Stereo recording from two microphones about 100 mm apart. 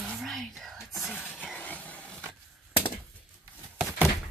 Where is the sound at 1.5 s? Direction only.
15° left (ahead or behind).